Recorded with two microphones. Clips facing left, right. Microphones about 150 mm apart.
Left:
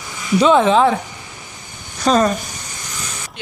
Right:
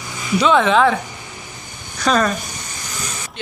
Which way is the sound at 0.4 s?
35° left (ahead or behind).